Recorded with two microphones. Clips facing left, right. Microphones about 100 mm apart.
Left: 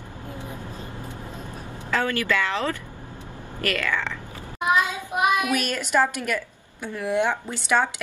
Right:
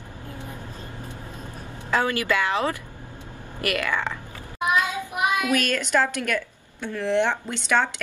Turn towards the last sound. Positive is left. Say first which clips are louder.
# even
turn(degrees=10)  # may be behind; listen again after turning